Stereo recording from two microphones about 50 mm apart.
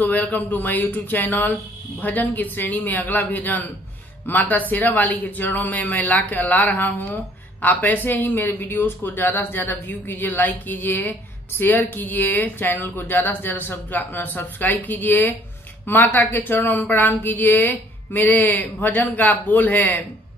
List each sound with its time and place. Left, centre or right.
0.1 s speech: left